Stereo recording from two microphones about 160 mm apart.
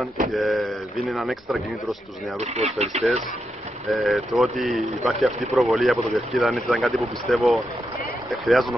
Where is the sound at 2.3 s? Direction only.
45° right (ahead or behind).